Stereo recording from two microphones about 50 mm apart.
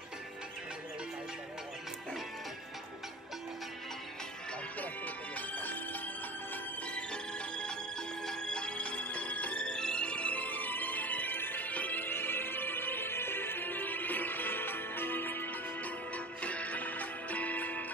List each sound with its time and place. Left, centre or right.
4.7 s music: left
7.0 s music: centre
12.0 s music: left
16.3 s music: left